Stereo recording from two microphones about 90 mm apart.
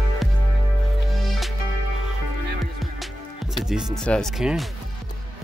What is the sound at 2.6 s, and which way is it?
Music, centre (ahead or behind).